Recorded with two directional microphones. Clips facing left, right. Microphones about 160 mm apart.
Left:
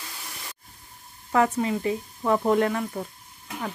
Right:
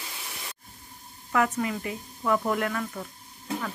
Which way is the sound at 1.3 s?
30° left (ahead or behind).